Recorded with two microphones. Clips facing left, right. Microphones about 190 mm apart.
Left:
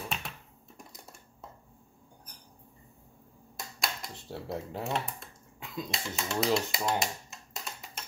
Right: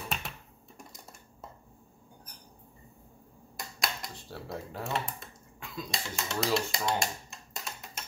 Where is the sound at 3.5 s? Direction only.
Centre (ahead or behind).